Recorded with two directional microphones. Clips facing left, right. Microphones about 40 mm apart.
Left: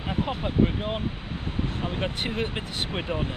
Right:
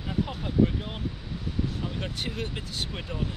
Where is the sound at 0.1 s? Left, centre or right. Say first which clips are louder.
Left 2 dB; left.